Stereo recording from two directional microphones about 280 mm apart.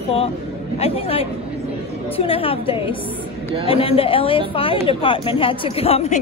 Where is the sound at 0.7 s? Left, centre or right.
Left.